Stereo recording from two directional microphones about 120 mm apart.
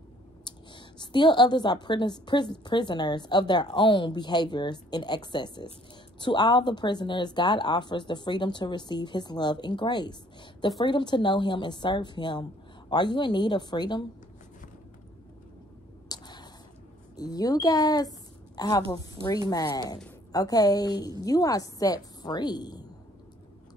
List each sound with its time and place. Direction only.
0.5 s a woman's voice: 40° left (ahead or behind)
16.1 s a sound: 35° left (ahead or behind)
17.2 s a woman's voice: 30° left (ahead or behind)